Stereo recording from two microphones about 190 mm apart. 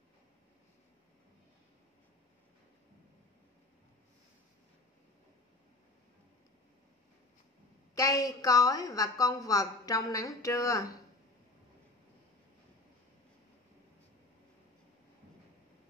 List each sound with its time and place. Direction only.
7.9 s a woman's voice: 15° left (ahead or behind)